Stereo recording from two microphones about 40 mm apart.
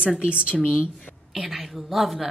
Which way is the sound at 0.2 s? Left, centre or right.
Right.